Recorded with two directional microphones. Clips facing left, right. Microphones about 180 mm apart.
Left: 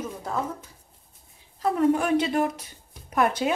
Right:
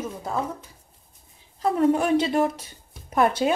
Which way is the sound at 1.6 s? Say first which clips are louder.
Right 1 dB; 25° right (ahead or behind).